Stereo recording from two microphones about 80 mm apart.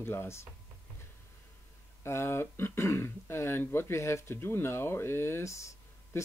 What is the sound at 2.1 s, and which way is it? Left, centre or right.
Speech, left.